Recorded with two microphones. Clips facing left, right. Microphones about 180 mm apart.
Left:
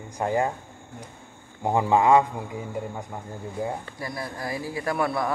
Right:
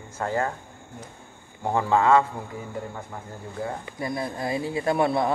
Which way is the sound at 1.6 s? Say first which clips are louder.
Left 1 dB; 15° left (ahead or behind).